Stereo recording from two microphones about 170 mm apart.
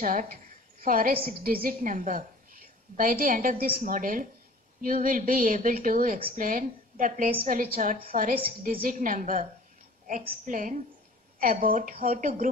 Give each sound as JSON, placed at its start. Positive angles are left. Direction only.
{"t": 0.0, "sound": "a woman's voice", "side_deg": -55}